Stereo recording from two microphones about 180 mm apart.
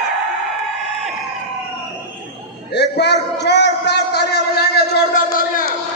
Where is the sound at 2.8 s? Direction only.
70° left (ahead or behind).